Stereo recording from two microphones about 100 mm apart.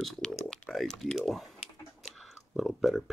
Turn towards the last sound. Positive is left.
turn(degrees=-5)  # may be behind; listen again after turning